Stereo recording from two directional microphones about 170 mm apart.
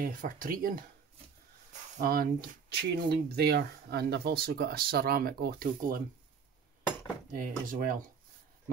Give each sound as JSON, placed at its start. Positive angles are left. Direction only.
{"t": 0.0, "sound": "speech", "side_deg": -50}
{"t": 2.0, "sound": "speech", "side_deg": -60}
{"t": 2.7, "sound": "speech", "side_deg": -70}
{"t": 7.3, "sound": "speech", "side_deg": -55}